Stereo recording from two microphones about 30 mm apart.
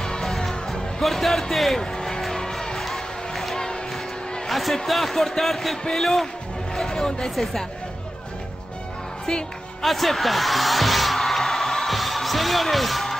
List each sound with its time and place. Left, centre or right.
0.0 s music: centre
1.0 s a man's voice: centre
1.8 s music: left
2.7 s music: centre
4.5 s a man's voice: centre
5.1 s a man's voice: centre
6.9 s speech: left
7.2 s a man's voice: centre
9.2 s music: left
9.8 s music: centre